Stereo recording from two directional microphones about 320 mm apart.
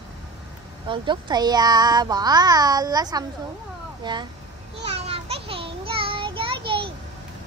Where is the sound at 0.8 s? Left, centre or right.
Centre.